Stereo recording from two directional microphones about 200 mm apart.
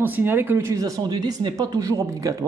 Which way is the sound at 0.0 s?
10° right (ahead or behind).